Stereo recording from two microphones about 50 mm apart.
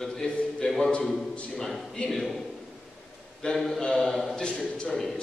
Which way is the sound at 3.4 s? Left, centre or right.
Centre.